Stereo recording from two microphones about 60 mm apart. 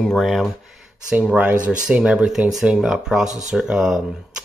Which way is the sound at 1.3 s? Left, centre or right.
Right.